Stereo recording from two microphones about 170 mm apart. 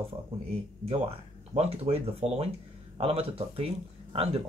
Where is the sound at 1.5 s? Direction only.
35° right (ahead or behind).